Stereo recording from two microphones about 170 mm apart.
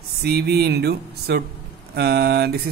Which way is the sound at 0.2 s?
70° right (ahead or behind).